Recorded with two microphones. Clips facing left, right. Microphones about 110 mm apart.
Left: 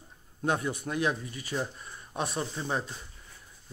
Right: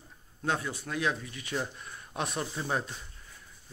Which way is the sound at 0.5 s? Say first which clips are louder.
Left 2 dB; 15° left (ahead or behind).